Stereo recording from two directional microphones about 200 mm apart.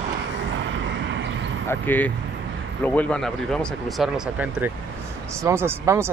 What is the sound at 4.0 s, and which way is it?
Speech, 5° right (ahead or behind).